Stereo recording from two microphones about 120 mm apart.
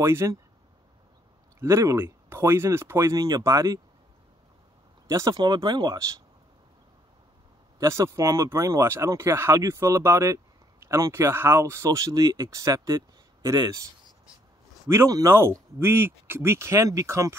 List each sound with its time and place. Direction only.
0.0 s speech: 20° right (ahead or behind)
1.6 s speech: 25° right (ahead or behind)
5.0 s speech: 30° right (ahead or behind)
7.8 s speech: 25° right (ahead or behind)
14.9 s speech: 25° right (ahead or behind)